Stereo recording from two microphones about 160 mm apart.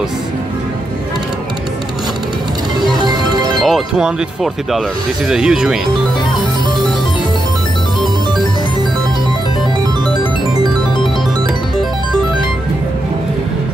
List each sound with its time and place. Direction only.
3.0 s music: 25° right (ahead or behind)
3.6 s speech: centre (ahead or behind)